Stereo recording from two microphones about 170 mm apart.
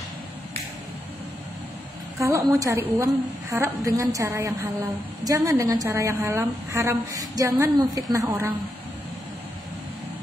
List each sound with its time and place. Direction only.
2.1 s a woman's voice: 20° right (ahead or behind)